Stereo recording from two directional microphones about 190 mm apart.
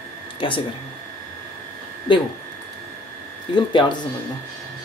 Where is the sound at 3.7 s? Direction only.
25° left (ahead or behind).